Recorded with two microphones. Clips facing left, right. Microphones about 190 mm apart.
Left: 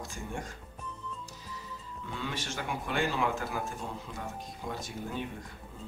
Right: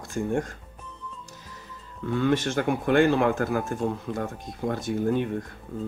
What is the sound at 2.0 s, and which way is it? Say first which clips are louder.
Speech: right 14 dB; 55° right (ahead or behind).